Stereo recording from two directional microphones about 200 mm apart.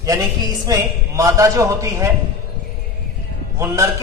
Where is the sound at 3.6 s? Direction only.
15° right (ahead or behind).